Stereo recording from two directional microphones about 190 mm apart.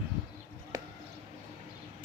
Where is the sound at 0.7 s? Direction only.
20° right (ahead or behind).